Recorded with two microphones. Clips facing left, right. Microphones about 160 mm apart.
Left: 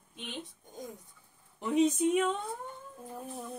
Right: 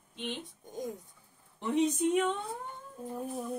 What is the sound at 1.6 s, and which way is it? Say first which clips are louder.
Speech: left 2 dB; 5° left (ahead or behind).